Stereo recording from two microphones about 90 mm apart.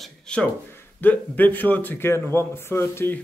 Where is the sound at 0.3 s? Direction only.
10° left (ahead or behind).